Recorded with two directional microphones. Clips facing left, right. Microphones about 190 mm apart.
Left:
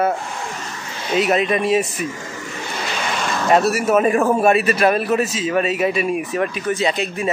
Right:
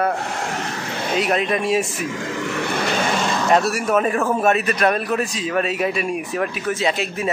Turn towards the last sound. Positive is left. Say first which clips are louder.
# left 1 dB
turn(degrees=0)  # may be behind; listen again after turning